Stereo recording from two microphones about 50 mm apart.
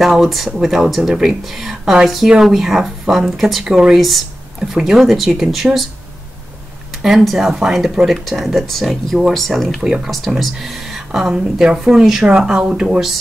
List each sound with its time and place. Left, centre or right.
0.0 s speech: centre
3.6 s speech: centre
4.0 s a sound: centre
4.7 s speech: centre
7.0 s speech: centre
12.3 s speech: centre